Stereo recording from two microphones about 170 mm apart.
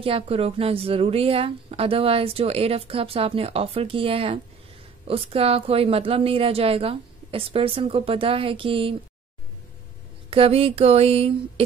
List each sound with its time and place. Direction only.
0.0 s speech: 35° right (ahead or behind)
10.3 s speech: 35° right (ahead or behind)